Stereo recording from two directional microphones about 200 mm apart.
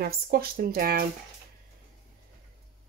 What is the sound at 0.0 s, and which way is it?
Speech, 50° right (ahead or behind).